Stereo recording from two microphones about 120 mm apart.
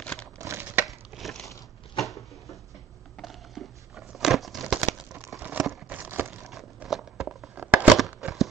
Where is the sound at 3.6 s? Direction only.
Centre (ahead or behind).